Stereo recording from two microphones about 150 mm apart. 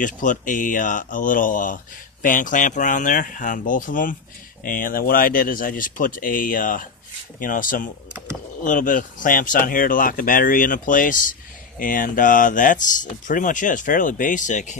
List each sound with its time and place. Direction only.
0.0 s speech: 60° left (ahead or behind)